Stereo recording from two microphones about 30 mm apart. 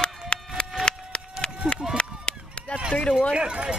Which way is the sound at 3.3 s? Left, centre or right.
Right.